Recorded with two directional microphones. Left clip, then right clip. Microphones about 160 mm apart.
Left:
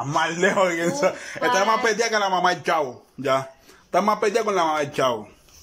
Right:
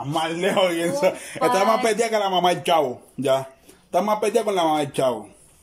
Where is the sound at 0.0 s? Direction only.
10° right (ahead or behind).